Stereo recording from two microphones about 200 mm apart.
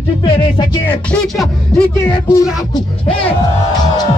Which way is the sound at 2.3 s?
20° left (ahead or behind).